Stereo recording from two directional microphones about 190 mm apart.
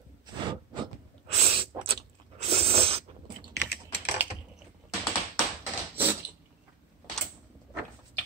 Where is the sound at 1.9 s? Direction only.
30° right (ahead or behind).